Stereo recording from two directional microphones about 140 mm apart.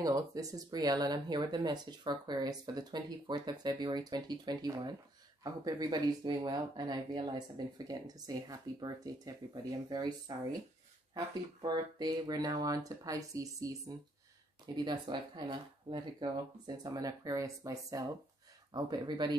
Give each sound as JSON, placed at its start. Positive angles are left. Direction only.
{"t": 0.0, "sound": "speech", "side_deg": -25}